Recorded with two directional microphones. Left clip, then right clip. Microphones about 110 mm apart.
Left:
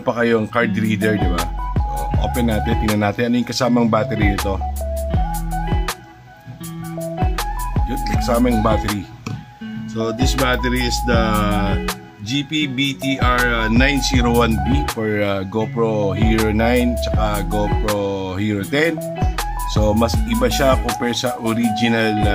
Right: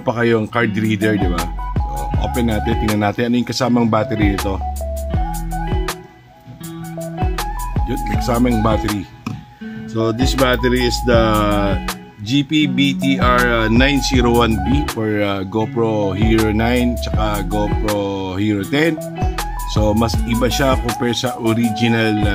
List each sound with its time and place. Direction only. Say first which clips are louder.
0.0 s speech: right 1 dB; 15° right (ahead or behind)
1.2 s music: right 1 dB; centre (ahead or behind)
2.2 s speech: right 1 dB; 20° right (ahead or behind)
3.9 s speech: right 1 dB; 25° right (ahead or behind)
7.2 s music: right 2 dB; centre (ahead or behind)
8.2 s speech: even; 20° right (ahead or behind)
10.2 s music: right 3 dB; centre (ahead or behind)
10.5 s speech: right 3 dB; 65° right (ahead or behind)
12.3 s music: right 4 dB; 70° right (ahead or behind)
13.7 s speech: right 2 dB; 40° right (ahead or behind)
15.0 s speech: right 1 dB; 25° right (ahead or behind)